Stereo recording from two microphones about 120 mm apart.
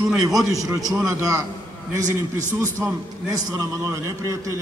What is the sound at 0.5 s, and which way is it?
A man's voice, 30° right (ahead or behind).